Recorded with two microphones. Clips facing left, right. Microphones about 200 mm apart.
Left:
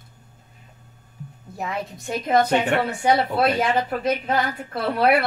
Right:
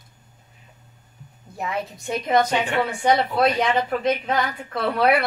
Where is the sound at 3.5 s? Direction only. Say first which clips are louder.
Even; 5° left (ahead or behind).